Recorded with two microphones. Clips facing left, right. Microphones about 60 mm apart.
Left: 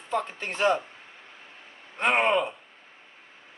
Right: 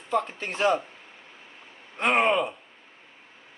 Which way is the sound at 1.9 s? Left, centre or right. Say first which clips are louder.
Right 1 dB; centre.